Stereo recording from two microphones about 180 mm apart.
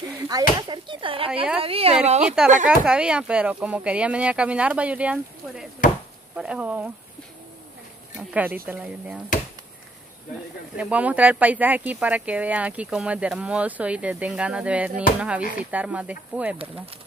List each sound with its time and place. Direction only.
0.3 s speech: 20° right (ahead or behind); by 2.3 s 40° right (ahead or behind)
2.7 s speech: 5° right (ahead or behind)
8.2 s speech: 10° right (ahead or behind)
10.8 s speech: 5° right (ahead or behind)